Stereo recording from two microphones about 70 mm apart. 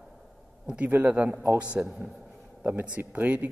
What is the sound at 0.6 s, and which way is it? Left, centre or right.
Speech, right.